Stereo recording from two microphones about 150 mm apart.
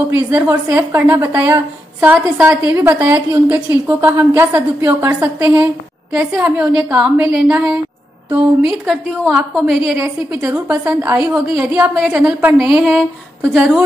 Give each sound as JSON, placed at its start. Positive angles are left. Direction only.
{"t": 0.3, "sound": "a woman's voice", "side_deg": -15}
{"t": 9.9, "sound": "a woman's voice", "side_deg": -15}